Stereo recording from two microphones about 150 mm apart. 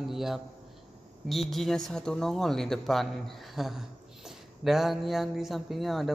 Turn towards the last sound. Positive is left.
turn(degrees=0)  # may be behind; listen again after turning